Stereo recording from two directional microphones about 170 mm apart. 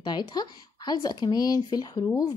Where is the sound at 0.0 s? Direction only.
25° left (ahead or behind).